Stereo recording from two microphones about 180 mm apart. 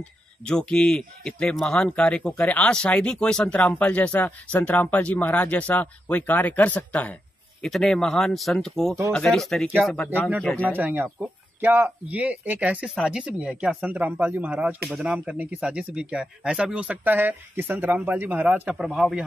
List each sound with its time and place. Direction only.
0.5 s speech: 5° left (ahead or behind)
10.7 s speech: 10° right (ahead or behind)